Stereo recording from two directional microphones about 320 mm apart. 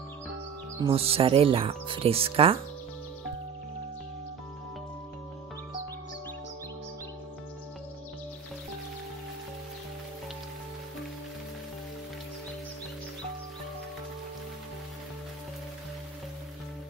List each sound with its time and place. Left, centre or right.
0.7 s speech: centre